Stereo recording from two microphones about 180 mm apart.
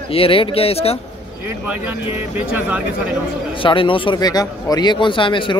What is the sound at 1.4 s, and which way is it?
Speech, 10° right (ahead or behind).